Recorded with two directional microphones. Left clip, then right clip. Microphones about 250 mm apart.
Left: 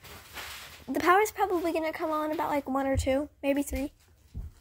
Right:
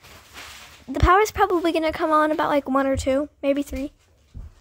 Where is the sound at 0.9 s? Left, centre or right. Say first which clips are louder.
Right 6 dB; centre.